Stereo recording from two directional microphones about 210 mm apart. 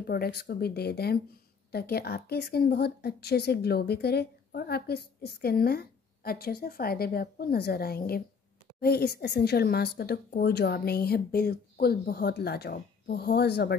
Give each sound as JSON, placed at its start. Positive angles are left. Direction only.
{"t": 0.0, "sound": "speech", "side_deg": 50}